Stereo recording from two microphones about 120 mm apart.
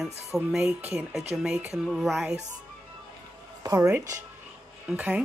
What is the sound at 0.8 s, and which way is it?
Speech, 15° right (ahead or behind).